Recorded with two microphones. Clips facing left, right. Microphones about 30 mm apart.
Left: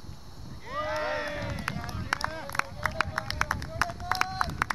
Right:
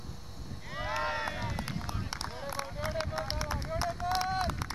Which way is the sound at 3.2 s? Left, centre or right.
Left.